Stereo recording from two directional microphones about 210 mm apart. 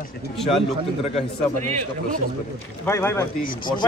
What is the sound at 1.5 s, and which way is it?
Speech, 40° right (ahead or behind).